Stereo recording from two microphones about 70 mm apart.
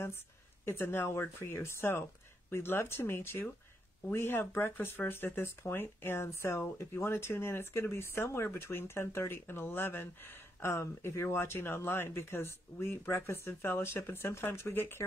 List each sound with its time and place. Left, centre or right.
0.7 s speech: left